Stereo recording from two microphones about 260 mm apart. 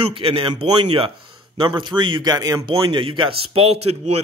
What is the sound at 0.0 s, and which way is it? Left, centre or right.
Speech, right.